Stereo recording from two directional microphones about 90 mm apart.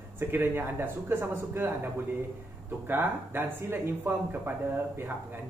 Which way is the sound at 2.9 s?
25° right (ahead or behind).